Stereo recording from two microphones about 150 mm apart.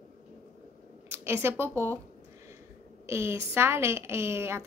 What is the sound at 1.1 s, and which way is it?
Speech, 15° right (ahead or behind).